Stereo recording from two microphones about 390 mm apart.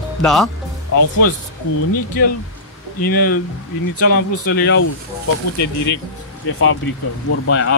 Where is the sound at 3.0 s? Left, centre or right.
Left.